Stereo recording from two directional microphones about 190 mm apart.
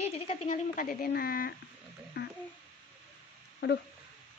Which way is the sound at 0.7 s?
50° left (ahead or behind).